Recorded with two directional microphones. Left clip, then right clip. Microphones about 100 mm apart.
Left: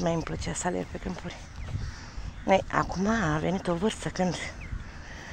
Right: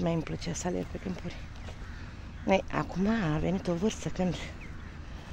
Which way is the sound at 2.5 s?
10° right (ahead or behind).